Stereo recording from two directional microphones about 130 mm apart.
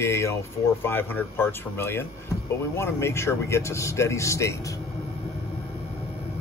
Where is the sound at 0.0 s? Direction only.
20° left (ahead or behind).